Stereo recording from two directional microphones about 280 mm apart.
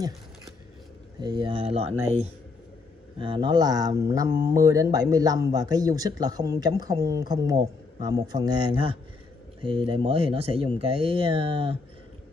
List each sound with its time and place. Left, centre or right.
1.2 s speech: centre